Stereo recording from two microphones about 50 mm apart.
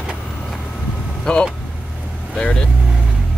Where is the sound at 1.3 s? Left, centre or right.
Centre.